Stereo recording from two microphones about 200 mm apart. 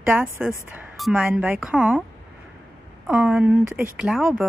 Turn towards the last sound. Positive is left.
turn(degrees=0)  # may be behind; listen again after turning